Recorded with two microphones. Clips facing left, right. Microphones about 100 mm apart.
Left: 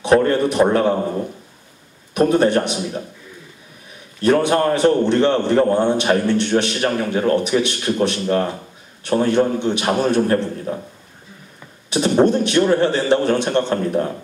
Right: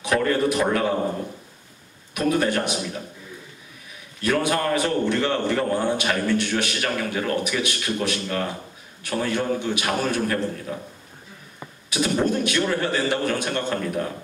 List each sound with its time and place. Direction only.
0.0 s a man's voice: 30° left (ahead or behind)
2.1 s a man's voice: 25° left (ahead or behind)
4.2 s a man's voice: 25° left (ahead or behind)
11.9 s a man's voice: 25° left (ahead or behind)